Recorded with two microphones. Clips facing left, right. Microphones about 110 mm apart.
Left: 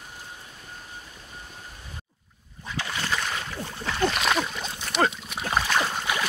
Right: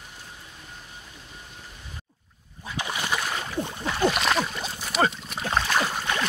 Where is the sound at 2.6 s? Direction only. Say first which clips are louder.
Right 1 dB; 15° right (ahead or behind).